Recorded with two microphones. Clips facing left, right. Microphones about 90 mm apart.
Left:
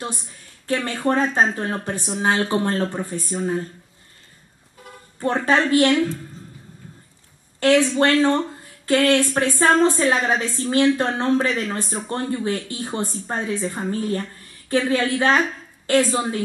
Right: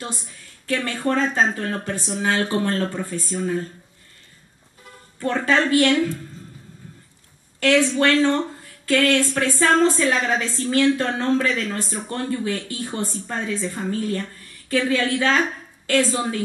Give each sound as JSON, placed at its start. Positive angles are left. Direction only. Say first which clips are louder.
{"t": 0.7, "sound": "speech", "louder": "left 1 dB", "side_deg": 20}
{"t": 5.2, "sound": "speech", "louder": "left 1 dB", "side_deg": 25}
{"t": 7.6, "sound": "speech", "louder": "left 1 dB", "side_deg": 20}